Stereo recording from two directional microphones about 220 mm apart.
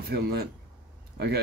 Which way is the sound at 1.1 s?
45° right (ahead or behind).